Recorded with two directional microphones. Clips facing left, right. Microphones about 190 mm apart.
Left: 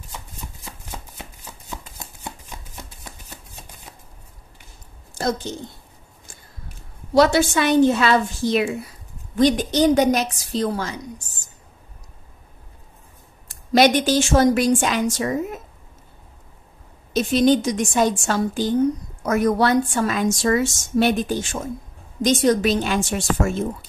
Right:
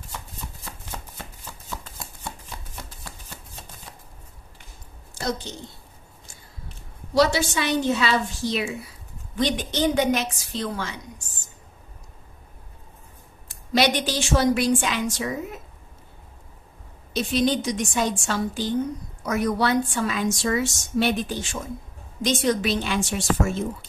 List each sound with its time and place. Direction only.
0.7 s shuffling cards: 15° left (ahead or behind)
5.1 s a woman's voice: 45° left (ahead or behind)
7.2 s a woman's voice: 55° left (ahead or behind)
13.5 s a woman's voice: 45° left (ahead or behind)
17.1 s a woman's voice: 45° left (ahead or behind)